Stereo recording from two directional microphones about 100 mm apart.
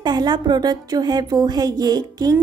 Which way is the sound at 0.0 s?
45° right (ahead or behind).